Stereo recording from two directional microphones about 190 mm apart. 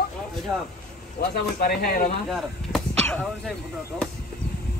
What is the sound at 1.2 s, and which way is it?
Speech, 55° left (ahead or behind).